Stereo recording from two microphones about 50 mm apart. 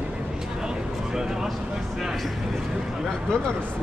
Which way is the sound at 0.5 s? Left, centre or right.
Centre.